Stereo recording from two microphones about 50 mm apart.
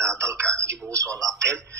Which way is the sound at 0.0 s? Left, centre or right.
Right.